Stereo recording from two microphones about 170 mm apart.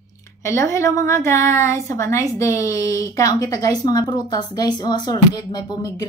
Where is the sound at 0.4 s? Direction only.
15° left (ahead or behind).